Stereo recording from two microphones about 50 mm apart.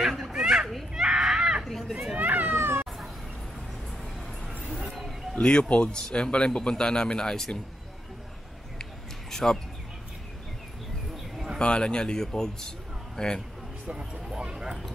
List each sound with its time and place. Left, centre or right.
0.0 s children playing: centre
0.9 s a sound: centre
1.6 s a sound: centre
2.1 s cat: right
2.5 s cat: right
4.8 s a sound: centre
5.3 s speech: centre
9.3 s speech: centre
11.5 s a man's voice: centre
13.8 s speech: centre